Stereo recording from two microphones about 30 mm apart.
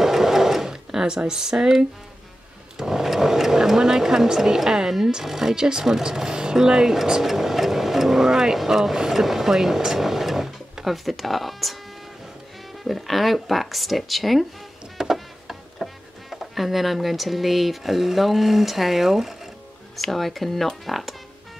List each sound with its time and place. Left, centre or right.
0.0 s sewing machine: centre
2.8 s speech: centre
9.9 s sewing machine: centre
11.1 s speech: centre
12.8 s speech: centre
20.0 s speech: centre